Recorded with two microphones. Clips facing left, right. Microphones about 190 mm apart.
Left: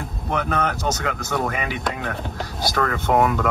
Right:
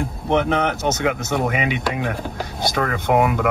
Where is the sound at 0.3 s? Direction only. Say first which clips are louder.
Right 4 dB; 25° right (ahead or behind).